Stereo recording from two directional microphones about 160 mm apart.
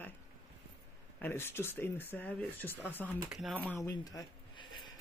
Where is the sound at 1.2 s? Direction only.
15° left (ahead or behind).